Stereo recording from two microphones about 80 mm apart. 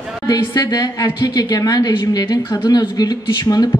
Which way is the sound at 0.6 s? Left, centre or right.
Left.